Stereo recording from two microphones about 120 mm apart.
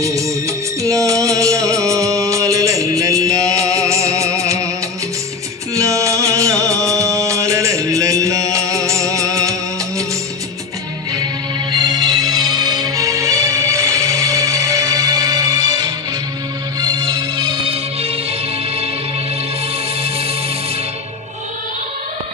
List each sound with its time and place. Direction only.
0.0 s music: 25° right (ahead or behind)
5.8 s music: 25° right (ahead or behind)
11.7 s music: 35° right (ahead or behind)